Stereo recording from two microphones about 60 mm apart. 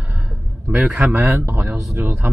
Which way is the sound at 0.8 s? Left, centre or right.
Centre.